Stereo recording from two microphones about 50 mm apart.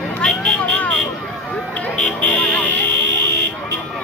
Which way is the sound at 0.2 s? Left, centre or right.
Left.